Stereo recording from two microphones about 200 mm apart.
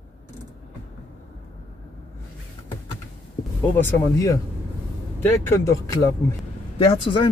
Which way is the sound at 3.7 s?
15° left (ahead or behind).